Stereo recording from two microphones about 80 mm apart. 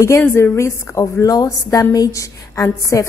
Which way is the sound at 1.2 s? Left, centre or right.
Left.